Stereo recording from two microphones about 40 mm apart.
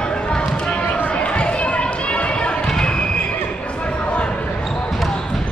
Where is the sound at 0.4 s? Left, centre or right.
Left.